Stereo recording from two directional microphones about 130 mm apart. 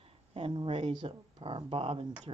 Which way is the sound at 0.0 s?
45° right (ahead or behind).